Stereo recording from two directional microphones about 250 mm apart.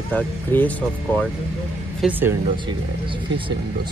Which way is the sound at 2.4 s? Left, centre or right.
Centre.